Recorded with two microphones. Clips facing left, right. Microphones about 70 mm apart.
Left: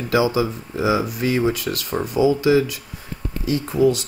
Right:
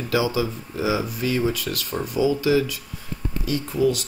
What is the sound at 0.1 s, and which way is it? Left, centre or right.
Speech, left.